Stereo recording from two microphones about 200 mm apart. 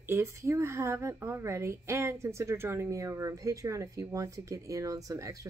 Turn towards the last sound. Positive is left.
turn(degrees=-15)  # may be behind; listen again after turning